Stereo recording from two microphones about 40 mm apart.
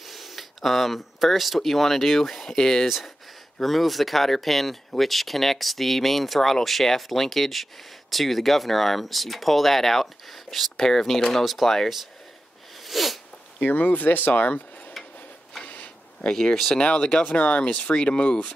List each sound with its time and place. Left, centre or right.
0.0 s speech: centre
3.6 s speech: centre
12.8 s sneeze: centre
13.6 s speech: left
15.6 s a sound: left
16.3 s speech: centre
16.7 s speech: left
17.2 s speech: left
17.9 s speech: left